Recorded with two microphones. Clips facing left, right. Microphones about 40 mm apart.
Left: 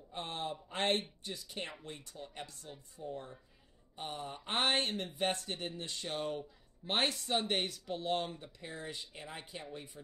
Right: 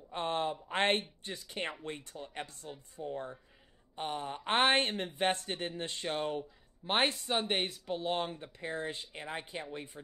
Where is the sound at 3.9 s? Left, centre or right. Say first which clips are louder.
Right 5 dB; right.